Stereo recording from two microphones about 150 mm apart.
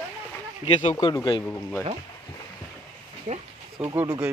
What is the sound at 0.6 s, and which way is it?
Speech, 40° left (ahead or behind).